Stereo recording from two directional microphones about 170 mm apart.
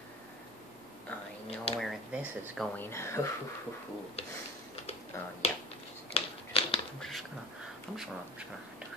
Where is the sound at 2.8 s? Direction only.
15° left (ahead or behind).